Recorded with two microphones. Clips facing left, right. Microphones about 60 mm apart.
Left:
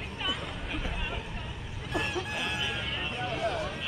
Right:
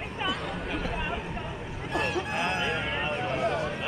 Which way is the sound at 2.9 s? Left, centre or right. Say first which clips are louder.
Right 5 dB; right.